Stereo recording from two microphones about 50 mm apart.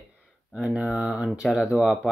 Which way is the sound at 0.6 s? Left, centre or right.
Centre.